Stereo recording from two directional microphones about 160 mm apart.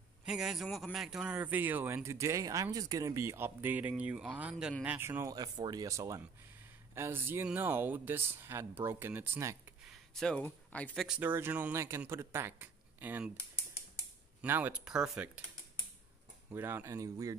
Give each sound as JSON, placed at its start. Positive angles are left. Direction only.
{"t": 0.2, "sound": "speech", "side_deg": -5}
{"t": 10.1, "sound": "speech", "side_deg": 5}
{"t": 11.1, "sound": "speech", "side_deg": -10}
{"t": 14.4, "sound": "speech", "side_deg": -10}
{"t": 16.4, "sound": "speech", "side_deg": -15}